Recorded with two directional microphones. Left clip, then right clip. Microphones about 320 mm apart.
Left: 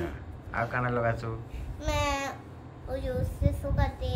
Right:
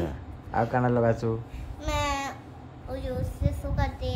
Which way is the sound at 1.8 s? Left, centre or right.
Centre.